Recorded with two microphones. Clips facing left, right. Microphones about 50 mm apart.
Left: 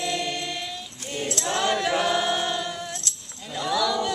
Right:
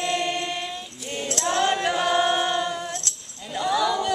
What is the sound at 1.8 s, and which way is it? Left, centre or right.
Choir, centre.